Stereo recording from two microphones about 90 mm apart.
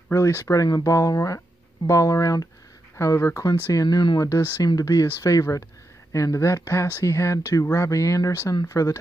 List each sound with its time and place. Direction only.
0.1 s speech: 30° left (ahead or behind); by 4.2 s 55° left (ahead or behind)
4.6 s speech: 40° left (ahead or behind)